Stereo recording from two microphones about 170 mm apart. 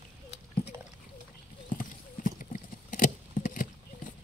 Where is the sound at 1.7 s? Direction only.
55° left (ahead or behind).